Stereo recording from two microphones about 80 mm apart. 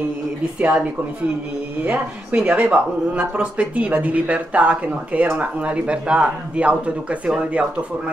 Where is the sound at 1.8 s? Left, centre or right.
Centre.